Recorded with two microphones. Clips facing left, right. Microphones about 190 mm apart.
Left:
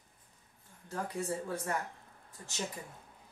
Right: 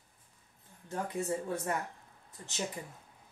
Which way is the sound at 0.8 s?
20° right (ahead or behind).